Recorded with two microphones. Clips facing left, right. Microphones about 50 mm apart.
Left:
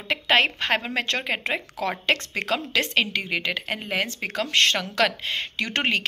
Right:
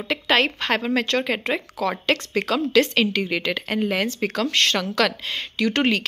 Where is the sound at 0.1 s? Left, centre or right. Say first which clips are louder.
Even; left.